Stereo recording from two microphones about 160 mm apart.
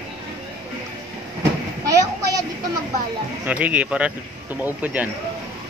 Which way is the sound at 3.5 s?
10° right (ahead or behind).